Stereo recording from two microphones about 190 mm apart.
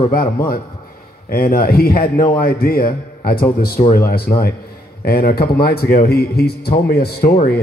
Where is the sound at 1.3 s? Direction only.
50° left (ahead or behind).